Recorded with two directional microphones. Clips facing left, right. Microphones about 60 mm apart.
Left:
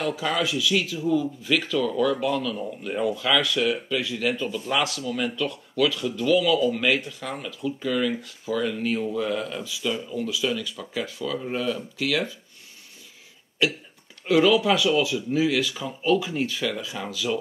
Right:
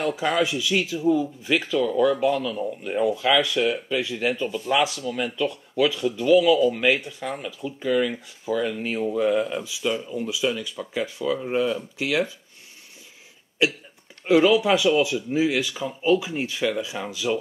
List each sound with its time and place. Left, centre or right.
0.0 s speech: right
13.6 s speech: centre